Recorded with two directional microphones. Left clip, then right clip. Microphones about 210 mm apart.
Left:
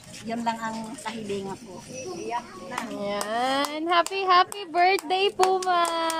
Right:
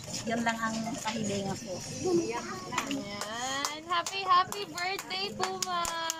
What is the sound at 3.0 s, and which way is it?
A child's voice, 55° left (ahead or behind).